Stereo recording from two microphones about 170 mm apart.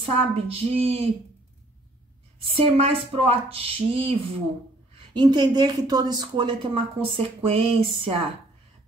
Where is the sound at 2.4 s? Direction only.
35° right (ahead or behind).